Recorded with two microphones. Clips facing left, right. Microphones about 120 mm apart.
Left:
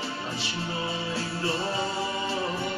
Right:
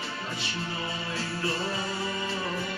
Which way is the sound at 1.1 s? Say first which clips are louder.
Even; 30° left (ahead or behind).